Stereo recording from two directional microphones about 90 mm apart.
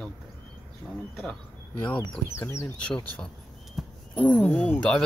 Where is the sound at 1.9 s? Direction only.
25° left (ahead or behind).